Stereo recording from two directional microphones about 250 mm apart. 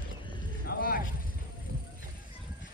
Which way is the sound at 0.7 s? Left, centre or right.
Left.